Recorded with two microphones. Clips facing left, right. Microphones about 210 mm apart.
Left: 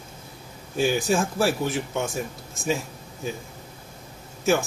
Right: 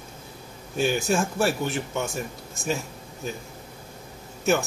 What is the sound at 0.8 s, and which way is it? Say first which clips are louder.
Speech: left 1 dB; centre (ahead or behind).